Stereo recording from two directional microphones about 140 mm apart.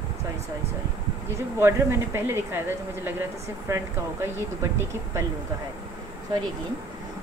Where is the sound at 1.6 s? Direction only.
20° right (ahead or behind).